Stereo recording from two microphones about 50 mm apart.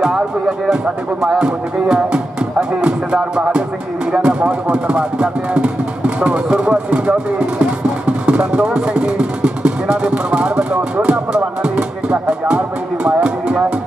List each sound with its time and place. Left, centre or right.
0.0 s speech: centre
8.7 s vehicle: centre
13.0 s a sound: right